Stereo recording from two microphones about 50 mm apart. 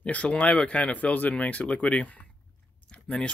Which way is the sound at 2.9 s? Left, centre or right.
Left.